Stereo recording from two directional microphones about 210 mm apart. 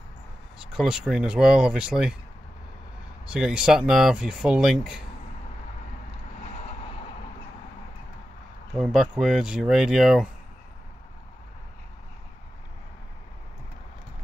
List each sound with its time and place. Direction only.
0.6 s speech: 5° right (ahead or behind)
3.3 s speech: 5° right (ahead or behind)
6.4 s boat: 30° left (ahead or behind)
8.7 s speech: centre (ahead or behind)